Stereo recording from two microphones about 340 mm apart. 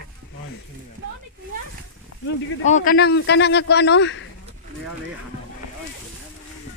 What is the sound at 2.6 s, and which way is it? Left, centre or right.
Speech, left.